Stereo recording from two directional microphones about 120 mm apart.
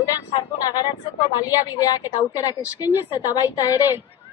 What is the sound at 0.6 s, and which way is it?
A woman's voice, 35° left (ahead or behind).